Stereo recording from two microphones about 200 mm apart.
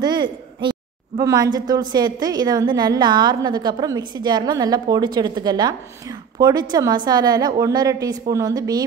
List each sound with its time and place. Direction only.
0.0 s a woman's voice: 20° right (ahead or behind)